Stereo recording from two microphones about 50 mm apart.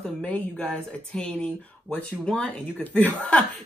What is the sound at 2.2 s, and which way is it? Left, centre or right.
A woman's voice, left.